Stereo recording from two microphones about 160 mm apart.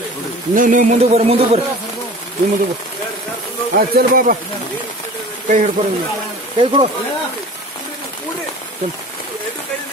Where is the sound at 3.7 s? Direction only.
70° right (ahead or behind).